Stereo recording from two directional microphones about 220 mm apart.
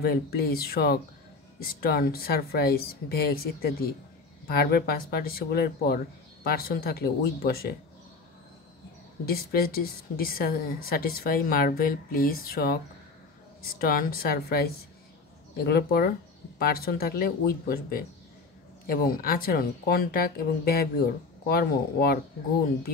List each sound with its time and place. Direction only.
0.0 s a woman's voice: 45° left (ahead or behind)
9.2 s a woman's voice: 45° left (ahead or behind)